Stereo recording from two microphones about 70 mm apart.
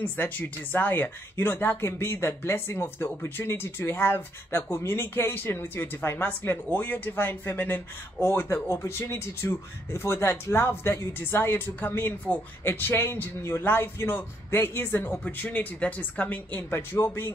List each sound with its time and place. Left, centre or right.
0.0 s speech: left